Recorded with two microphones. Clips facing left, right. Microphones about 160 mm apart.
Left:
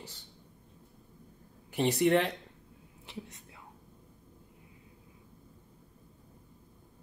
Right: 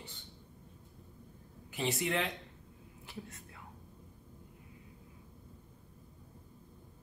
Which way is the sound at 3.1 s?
20° left (ahead or behind).